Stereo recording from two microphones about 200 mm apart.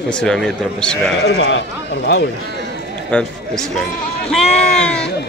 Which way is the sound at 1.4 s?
70° left (ahead or behind).